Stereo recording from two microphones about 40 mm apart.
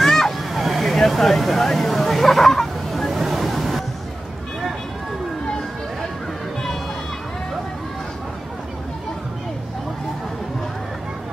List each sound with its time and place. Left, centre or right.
0.0 s vehicle: centre